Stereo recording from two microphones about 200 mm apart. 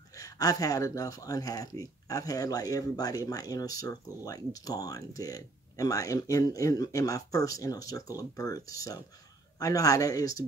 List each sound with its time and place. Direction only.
0.1 s speech: 15° left (ahead or behind)